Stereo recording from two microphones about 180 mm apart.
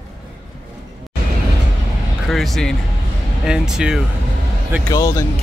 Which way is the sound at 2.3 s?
Centre (ahead or behind).